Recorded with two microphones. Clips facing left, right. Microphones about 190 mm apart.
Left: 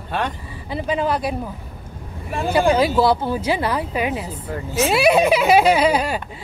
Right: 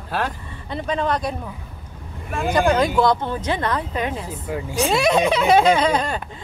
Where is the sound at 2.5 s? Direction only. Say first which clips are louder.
Left 2 dB; 10° left (ahead or behind).